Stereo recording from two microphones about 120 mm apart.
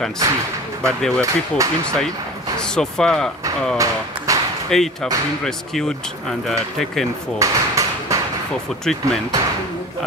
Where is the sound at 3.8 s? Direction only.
25° right (ahead or behind).